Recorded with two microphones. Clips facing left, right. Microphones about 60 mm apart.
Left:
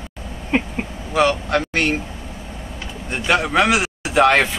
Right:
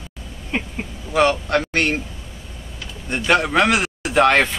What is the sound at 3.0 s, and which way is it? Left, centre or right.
A man's voice, centre.